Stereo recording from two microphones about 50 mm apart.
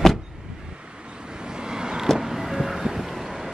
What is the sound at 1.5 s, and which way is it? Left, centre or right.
Vehicle, centre.